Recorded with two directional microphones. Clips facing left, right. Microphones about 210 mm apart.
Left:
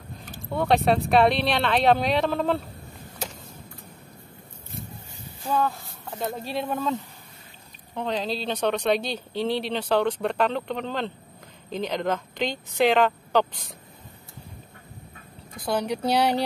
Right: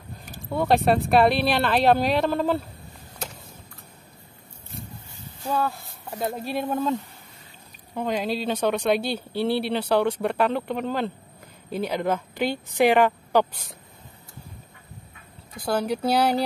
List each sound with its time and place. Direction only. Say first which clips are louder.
0.5 s speech: right 1 dB; centre (ahead or behind)
6.1 s speech: right 2 dB; 10° right (ahead or behind)
15.6 s speech: right 1 dB; 5° right (ahead or behind)